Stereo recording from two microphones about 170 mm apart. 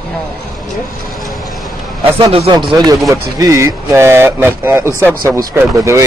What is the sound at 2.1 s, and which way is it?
Speech, 30° right (ahead or behind).